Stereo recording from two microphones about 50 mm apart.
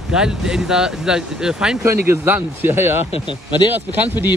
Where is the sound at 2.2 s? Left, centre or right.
Right.